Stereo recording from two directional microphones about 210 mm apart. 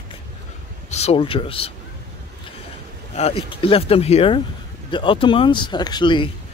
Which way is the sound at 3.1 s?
30° left (ahead or behind).